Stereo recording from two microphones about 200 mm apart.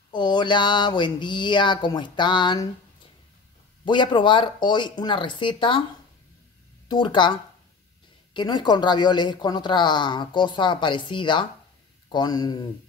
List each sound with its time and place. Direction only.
0.1 s speech: 20° left (ahead or behind)
3.8 s speech: 25° left (ahead or behind)
6.9 s speech: 25° left (ahead or behind)